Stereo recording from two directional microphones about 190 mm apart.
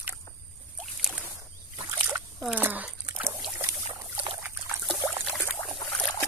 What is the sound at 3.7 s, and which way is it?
Boat, 25° right (ahead or behind).